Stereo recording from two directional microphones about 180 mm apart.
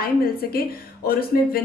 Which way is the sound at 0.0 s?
55° left (ahead or behind).